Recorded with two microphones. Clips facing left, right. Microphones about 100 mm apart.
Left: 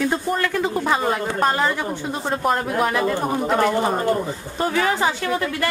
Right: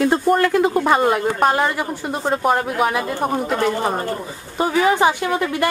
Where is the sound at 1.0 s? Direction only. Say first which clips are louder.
Right 4 dB; 5° right (ahead or behind).